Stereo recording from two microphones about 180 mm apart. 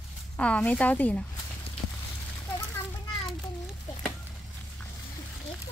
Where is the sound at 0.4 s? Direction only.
5° left (ahead or behind).